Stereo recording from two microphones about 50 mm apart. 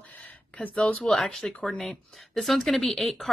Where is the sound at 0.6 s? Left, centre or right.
Left.